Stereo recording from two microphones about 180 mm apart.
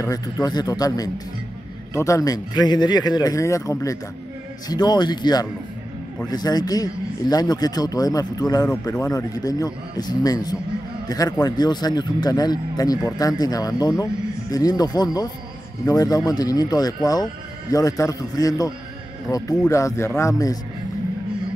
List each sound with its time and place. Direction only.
0.0 s a man's voice: 20° left (ahead or behind)